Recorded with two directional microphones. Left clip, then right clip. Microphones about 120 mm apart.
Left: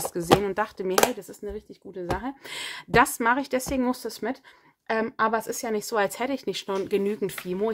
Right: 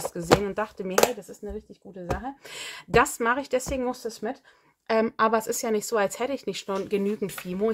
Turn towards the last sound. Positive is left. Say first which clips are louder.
# even
turn(degrees=25)  # may be behind; listen again after turning